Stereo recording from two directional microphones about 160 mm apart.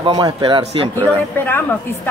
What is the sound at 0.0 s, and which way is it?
Speech, 30° right (ahead or behind).